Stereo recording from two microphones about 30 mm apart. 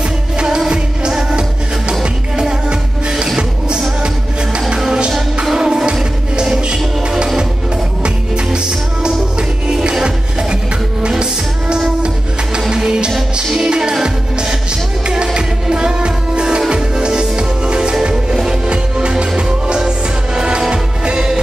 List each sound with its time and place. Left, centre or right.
3.3 s music: right
6.5 s music: right
10.0 s music: right
12.6 s music: right
15.3 s music: right
18.1 s music: centre
19.0 s music: right